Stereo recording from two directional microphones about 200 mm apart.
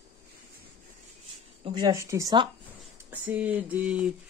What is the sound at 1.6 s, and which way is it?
Speech, 20° right (ahead or behind).